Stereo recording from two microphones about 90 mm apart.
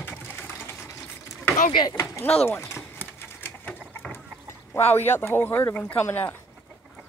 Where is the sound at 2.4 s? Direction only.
30° left (ahead or behind).